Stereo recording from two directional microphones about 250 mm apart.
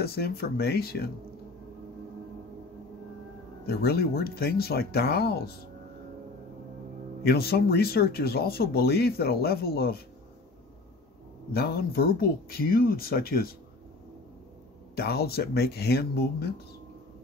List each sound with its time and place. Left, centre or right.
0.0 s speech: left
3.6 s speech: left
7.2 s speech: left
11.5 s speech: left
15.0 s speech: left